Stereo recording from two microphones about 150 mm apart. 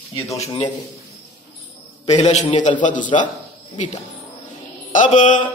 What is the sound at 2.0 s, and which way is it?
Speech, 45° left (ahead or behind).